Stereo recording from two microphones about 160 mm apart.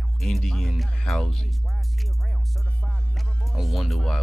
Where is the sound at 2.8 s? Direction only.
Centre (ahead or behind).